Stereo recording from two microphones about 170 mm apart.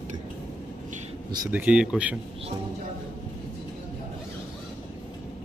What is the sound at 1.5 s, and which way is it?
Speech, 5° right (ahead or behind).